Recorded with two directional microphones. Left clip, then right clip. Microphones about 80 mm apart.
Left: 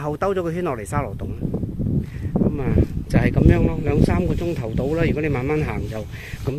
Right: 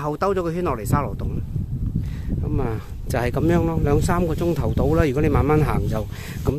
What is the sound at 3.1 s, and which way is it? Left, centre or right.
Speech, right.